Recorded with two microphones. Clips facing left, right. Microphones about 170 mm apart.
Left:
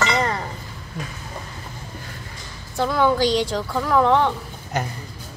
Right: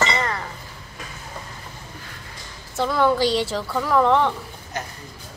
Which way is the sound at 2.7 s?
Centre (ahead or behind).